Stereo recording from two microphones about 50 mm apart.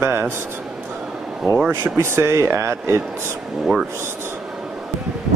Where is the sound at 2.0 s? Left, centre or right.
Right.